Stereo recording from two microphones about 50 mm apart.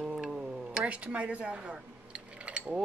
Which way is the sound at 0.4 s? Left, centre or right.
Right.